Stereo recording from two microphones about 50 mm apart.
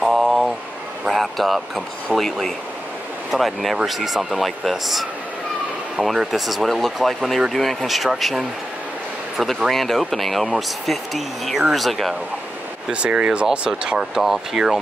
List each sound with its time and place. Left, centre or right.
0.0 s vehicle: centre
1.1 s a sound: centre
2.1 s speech: centre
6.1 s speech: centre
12.9 s speech: right
13.9 s speech: centre